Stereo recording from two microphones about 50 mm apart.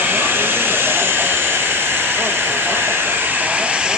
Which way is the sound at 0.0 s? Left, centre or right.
Right.